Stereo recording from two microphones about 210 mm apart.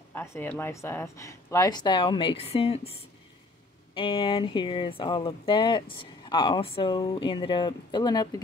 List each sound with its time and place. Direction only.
0.1 s speech: 10° left (ahead or behind); by 2.9 s 30° left (ahead or behind)
3.9 s speech: 25° left (ahead or behind)